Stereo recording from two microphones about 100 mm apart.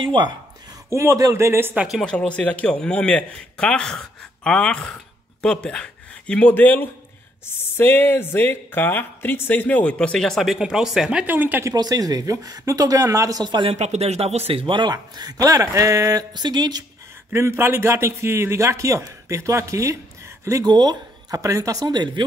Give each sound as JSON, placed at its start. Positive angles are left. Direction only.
{"t": 0.0, "sound": "a man's voice", "side_deg": -55}
{"t": 0.8, "sound": "a man's voice", "side_deg": -30}
{"t": 1.8, "sound": "speech", "side_deg": 0}
{"t": 2.0, "sound": "speech", "side_deg": 10}
{"t": 11.7, "sound": "speech", "side_deg": -40}
{"t": 13.7, "sound": "a man's voice", "side_deg": -90}
{"t": 17.3, "sound": "a man's voice", "side_deg": -25}
{"t": 20.7, "sound": "speech", "side_deg": -45}